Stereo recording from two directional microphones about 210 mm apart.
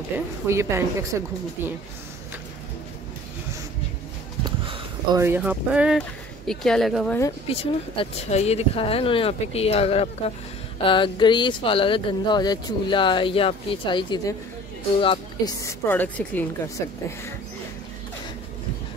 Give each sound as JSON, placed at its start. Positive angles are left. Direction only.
{"t": 0.5, "sound": "a woman's voice", "side_deg": -10}
{"t": 4.6, "sound": "speech", "side_deg": -15}
{"t": 7.4, "sound": "a woman's voice", "side_deg": 25}